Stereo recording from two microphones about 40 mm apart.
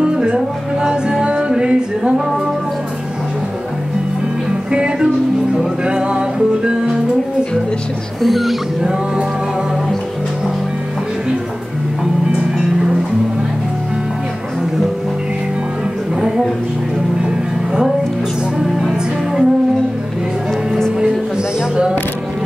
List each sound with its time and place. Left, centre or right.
0.0 s music: centre
4.6 s music: right
8.2 s speech: centre
12.4 s music: centre
18.6 s music: centre